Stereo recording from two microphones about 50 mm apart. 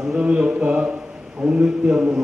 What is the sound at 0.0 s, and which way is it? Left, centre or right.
A man's voice, centre.